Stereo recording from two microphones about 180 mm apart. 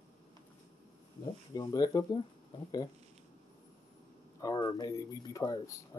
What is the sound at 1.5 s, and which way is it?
Speech, 20° left (ahead or behind).